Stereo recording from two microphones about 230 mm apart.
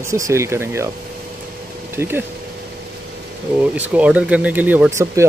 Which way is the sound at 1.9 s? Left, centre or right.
Centre.